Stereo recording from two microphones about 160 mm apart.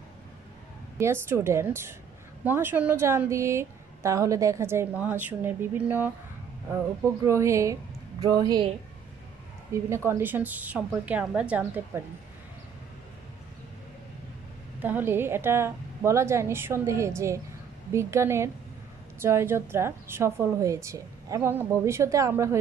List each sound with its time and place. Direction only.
0.9 s a woman's voice: 15° right (ahead or behind)
7.2 s speech: 20° right (ahead or behind)
9.8 s a woman's voice: 15° right (ahead or behind)
14.8 s a woman's voice: 10° right (ahead or behind)